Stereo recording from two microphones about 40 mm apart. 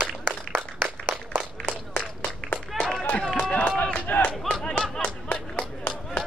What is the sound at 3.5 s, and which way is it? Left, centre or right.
Run, left.